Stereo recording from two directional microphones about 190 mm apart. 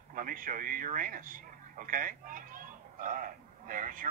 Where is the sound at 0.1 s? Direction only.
45° right (ahead or behind).